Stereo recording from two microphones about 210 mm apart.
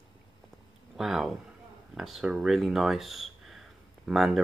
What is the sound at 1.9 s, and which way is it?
Speech, centre (ahead or behind).